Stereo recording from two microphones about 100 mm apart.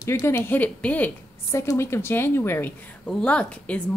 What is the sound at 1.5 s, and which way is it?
Speech, 25° left (ahead or behind).